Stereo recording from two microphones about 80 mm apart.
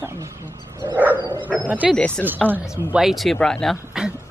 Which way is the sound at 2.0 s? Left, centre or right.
Centre.